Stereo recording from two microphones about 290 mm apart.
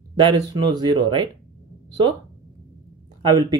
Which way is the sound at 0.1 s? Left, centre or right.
Centre.